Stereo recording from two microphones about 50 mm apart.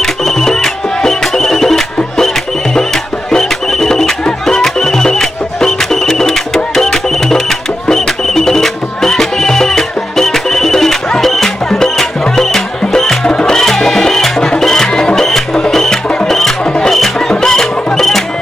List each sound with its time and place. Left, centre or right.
0.0 s music: centre
16.6 s music: centre
16.9 s music: centre